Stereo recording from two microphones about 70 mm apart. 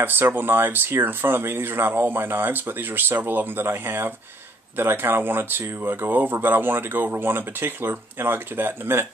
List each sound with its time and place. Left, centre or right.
0.0 s speech: right